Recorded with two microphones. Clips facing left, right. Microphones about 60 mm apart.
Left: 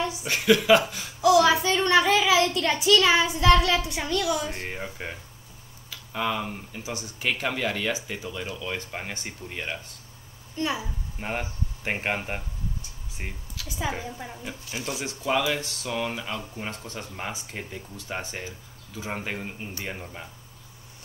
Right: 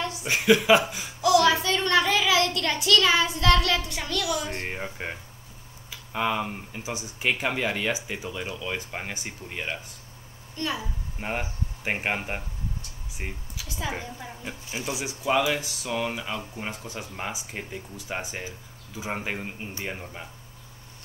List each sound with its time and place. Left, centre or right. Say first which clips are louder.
0.2 s speech: right 2 dB; centre
1.2 s a child's voice: left 1 dB; centre
4.3 s speech: left 1 dB; centre
4.6 s speech: right 1 dB; centre
10.5 s a woman's voice: left 2 dB; centre
11.1 s speech: even; centre
13.6 s speech: left 3 dB; centre
14.0 s a woman's voice: left 2 dB; centre
14.4 s speech: right 2 dB; centre